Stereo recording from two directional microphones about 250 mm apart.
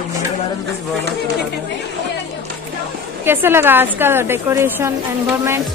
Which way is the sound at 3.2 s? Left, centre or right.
Centre.